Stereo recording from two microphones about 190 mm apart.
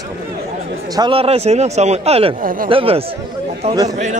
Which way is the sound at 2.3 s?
45° right (ahead or behind).